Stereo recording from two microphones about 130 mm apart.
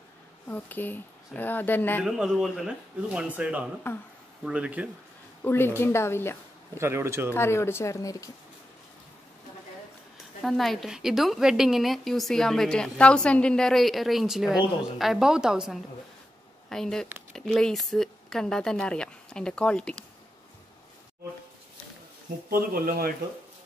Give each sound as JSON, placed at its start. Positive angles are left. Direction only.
{"t": 0.5, "sound": "speech", "side_deg": 15}
{"t": 2.0, "sound": "a man's voice", "side_deg": -5}
{"t": 3.9, "sound": "speech", "side_deg": 20}
{"t": 4.5, "sound": "a man's voice", "side_deg": -10}
{"t": 5.4, "sound": "speech", "side_deg": 15}
{"t": 6.8, "sound": "a man's voice", "side_deg": -20}
{"t": 7.3, "sound": "speech", "side_deg": 20}
{"t": 10.4, "sound": "a woman's voice", "side_deg": 0}
{"t": 22.6, "sound": "speech", "side_deg": -90}